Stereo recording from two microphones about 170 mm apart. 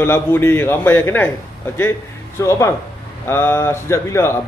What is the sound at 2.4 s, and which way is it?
A man's voice, 15° left (ahead or behind).